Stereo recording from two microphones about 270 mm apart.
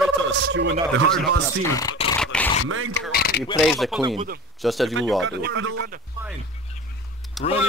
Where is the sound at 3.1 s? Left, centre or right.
Left.